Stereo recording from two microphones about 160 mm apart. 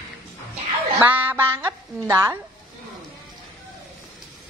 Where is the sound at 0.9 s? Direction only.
10° right (ahead or behind).